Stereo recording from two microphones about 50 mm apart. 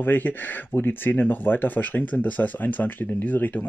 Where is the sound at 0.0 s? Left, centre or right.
Left.